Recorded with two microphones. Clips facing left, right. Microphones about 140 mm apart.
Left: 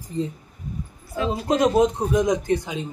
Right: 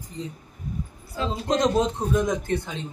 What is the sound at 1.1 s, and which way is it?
Speech, 10° left (ahead or behind).